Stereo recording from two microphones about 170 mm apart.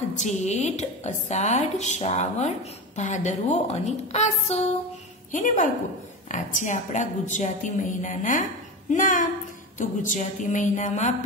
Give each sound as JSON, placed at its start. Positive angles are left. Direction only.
{"t": 0.1, "sound": "a woman's voice", "side_deg": 45}